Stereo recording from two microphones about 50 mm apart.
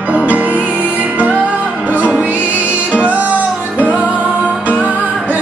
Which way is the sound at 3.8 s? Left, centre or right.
Right.